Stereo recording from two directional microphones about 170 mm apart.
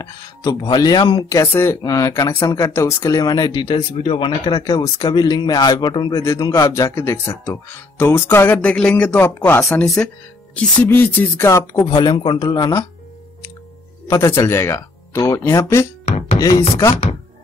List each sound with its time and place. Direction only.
0.0 s speech: 20° left (ahead or behind)
1.4 s speech: 15° left (ahead or behind)
14.0 s speech: 20° left (ahead or behind)
16.1 s music: 40° left (ahead or behind)
16.3 s chopping: 20° left (ahead or behind)